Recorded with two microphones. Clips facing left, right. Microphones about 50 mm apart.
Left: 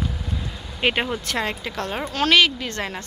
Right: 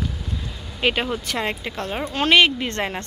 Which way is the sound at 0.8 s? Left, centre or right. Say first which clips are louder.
Even; centre.